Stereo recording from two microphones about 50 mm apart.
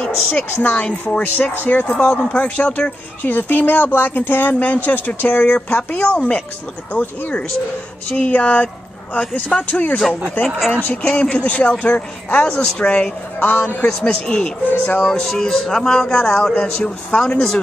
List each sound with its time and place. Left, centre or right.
0.0 s speech: left
10.4 s speech: left
11.0 s speech: left
13.4 s speech: left
14.2 s speech: centre
14.9 s speech: left
15.1 s speech: centre